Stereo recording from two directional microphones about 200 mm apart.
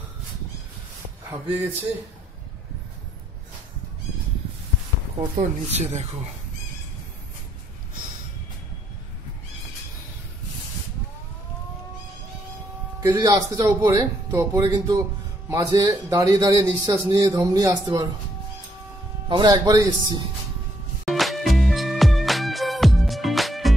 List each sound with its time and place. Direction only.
5.3 s speech: 35° right (ahead or behind)
13.0 s a man's voice: 15° right (ahead or behind)
19.2 s speech: 20° right (ahead or behind)
21.0 s music: centre (ahead or behind)